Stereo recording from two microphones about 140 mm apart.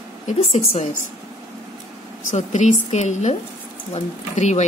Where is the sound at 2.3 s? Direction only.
55° left (ahead or behind).